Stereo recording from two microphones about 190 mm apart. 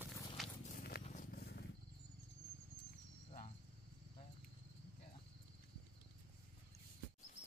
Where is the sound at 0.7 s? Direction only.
55° left (ahead or behind).